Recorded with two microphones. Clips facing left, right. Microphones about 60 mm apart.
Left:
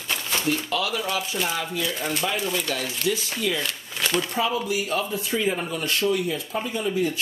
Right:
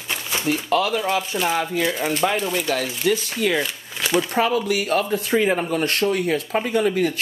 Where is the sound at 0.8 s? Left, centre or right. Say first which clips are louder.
Right 6 dB; right.